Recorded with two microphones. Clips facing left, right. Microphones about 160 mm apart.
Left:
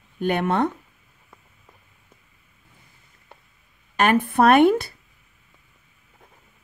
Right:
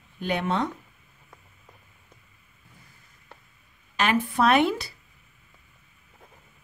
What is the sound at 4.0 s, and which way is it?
Speech, 50° left (ahead or behind).